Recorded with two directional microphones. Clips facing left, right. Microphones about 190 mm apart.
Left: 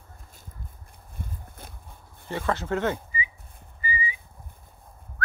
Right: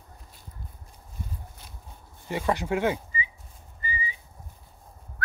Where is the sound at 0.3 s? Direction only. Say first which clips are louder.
Left 1 dB; 50° left (ahead or behind).